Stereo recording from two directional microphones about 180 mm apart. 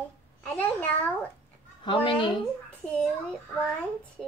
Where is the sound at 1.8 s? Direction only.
30° left (ahead or behind).